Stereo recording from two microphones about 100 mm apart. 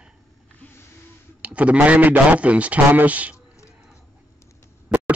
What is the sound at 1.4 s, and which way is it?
A man's voice, 15° right (ahead or behind).